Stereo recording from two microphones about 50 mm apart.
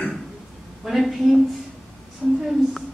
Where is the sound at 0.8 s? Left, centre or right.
Centre.